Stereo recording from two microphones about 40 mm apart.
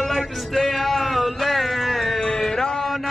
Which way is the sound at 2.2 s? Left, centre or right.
Centre.